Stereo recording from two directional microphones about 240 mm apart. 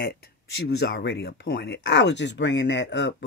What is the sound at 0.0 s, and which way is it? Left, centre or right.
Speech, left.